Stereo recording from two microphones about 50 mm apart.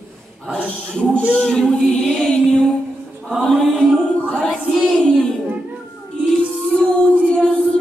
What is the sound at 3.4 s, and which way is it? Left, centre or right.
Chant, centre.